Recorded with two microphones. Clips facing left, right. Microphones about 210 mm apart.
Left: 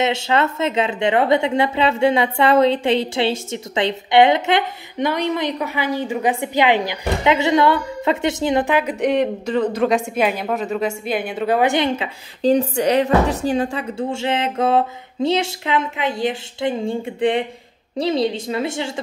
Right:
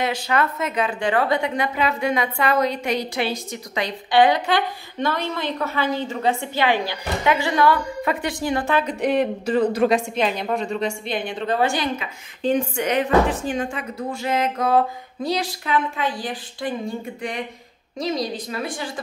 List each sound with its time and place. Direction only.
0.0 s a woman's voice: 25° left (ahead or behind)
9.7 s a woman's voice: 10° right (ahead or behind)
10.1 s a woman's voice: 5° left (ahead or behind); by 18.9 s 25° left (ahead or behind)